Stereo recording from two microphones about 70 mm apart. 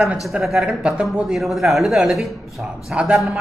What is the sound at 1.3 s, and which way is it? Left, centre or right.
Speech, centre.